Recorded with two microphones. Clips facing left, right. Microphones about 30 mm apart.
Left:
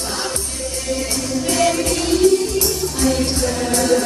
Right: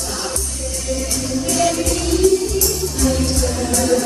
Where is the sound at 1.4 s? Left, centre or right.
Left.